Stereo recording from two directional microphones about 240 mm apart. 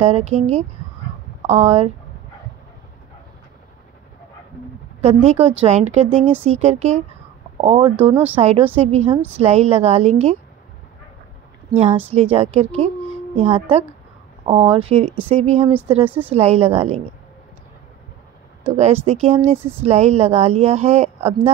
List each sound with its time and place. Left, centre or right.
0.0 s a woman's voice: right
5.0 s a woman's voice: right
12.1 s a woman's voice: right
16.0 s speech: centre
16.3 s a woman's voice: right
18.6 s a woman's voice: right